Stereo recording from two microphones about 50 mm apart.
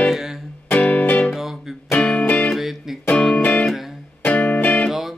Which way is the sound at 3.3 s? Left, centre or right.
Left.